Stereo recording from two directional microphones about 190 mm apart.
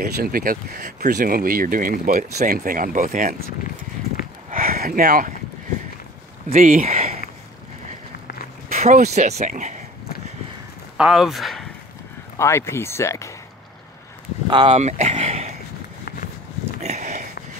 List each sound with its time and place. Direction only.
0.0 s speech: 50° right (ahead or behind)
2.2 s speech: 55° right (ahead or behind)
4.5 s a sound: 50° right (ahead or behind)
6.5 s speech: 45° right (ahead or behind)
8.7 s speech: 35° right (ahead or behind)
11.0 s speech: 5° right (ahead or behind)
12.4 s speech: 15° left (ahead or behind)
14.5 s speech: 25° right (ahead or behind)
14.8 s a sound: 35° right (ahead or behind)
16.8 s a sound: 35° right (ahead or behind)